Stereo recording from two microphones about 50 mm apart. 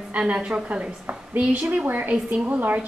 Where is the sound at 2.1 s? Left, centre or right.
Centre.